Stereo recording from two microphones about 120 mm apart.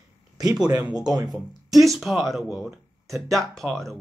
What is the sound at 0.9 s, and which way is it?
Speech, 35° right (ahead or behind).